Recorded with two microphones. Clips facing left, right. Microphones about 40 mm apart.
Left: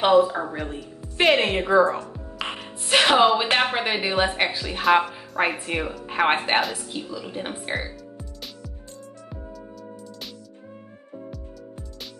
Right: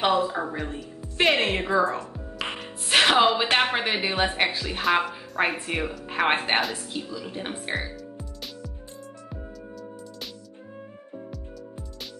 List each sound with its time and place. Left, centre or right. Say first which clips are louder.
0.2 s a woman's voice: left 4 dB; centre
1.7 s a woman's voice: left 6 dB; left
2.1 s speech: left 1 dB; centre
7.6 s music: left 1 dB; centre
11.1 s music: left 1 dB; centre